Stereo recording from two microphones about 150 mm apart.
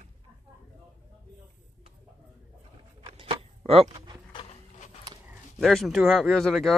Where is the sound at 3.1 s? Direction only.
40° right (ahead or behind).